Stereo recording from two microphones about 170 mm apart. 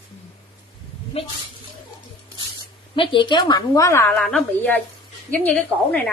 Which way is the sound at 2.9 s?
30° left (ahead or behind).